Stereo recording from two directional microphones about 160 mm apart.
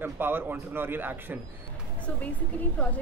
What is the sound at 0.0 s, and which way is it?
Speech, 15° right (ahead or behind).